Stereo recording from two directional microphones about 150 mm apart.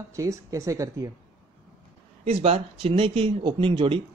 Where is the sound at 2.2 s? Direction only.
40° right (ahead or behind).